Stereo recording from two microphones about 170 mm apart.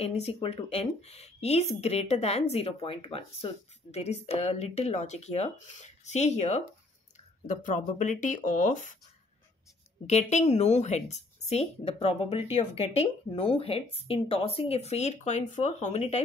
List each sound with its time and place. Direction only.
0.0 s speech: 40° left (ahead or behind)
10.0 s speech: 40° left (ahead or behind)